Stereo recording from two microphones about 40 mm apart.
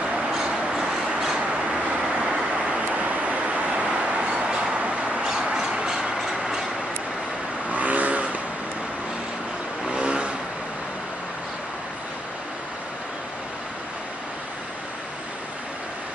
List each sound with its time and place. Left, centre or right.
0.4 s a sound: centre
1.4 s vehicle: right
2.9 s vehicle: right
5.2 s a sound: centre
7.7 s vehicle: right
9.8 s vehicle: right